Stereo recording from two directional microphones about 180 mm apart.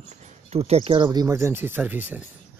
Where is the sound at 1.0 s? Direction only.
15° right (ahead or behind).